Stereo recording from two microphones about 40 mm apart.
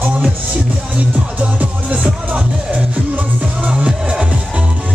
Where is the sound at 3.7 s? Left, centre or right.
Right.